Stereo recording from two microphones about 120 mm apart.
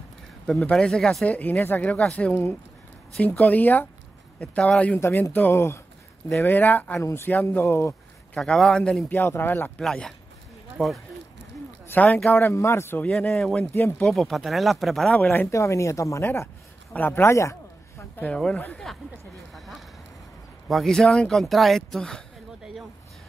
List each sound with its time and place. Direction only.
0.5 s speech: 5° left (ahead or behind); by 7.9 s 25° left (ahead or behind)
8.4 s speech: 5° left (ahead or behind)
9.8 s speech: 5° left (ahead or behind)
11.9 s speech: 10° left (ahead or behind)
13.1 s speech: 5° left (ahead or behind)
13.7 s speech: 15° left (ahead or behind)
14.0 s speech: 5° left (ahead or behind)
15.1 s speech: 15° left (ahead or behind)
16.9 s a sound: 15° left (ahead or behind)
18.2 s speech: 10° left (ahead or behind)
19.5 s a sound: centre (ahead or behind)
20.6 s speech: centre (ahead or behind)